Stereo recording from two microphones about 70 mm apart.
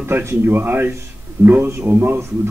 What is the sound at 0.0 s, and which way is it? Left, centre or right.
A man's voice, right.